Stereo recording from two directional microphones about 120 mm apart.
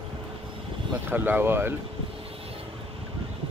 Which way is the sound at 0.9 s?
15° right (ahead or behind).